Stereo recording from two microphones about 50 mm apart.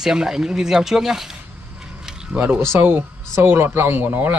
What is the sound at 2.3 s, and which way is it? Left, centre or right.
Speech, right.